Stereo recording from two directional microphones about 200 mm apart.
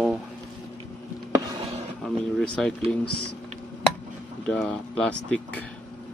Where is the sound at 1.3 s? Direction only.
15° right (ahead or behind).